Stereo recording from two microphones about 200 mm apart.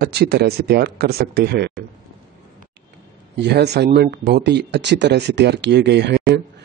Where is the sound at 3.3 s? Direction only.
55° right (ahead or behind).